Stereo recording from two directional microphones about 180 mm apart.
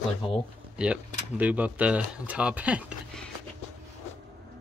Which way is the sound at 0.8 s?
5° right (ahead or behind).